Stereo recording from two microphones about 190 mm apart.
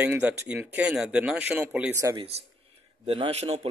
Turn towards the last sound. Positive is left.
turn(degrees=-35)  # may be behind; listen again after turning